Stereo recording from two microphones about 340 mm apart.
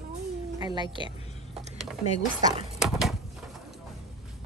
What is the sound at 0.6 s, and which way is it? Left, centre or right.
Speech, centre.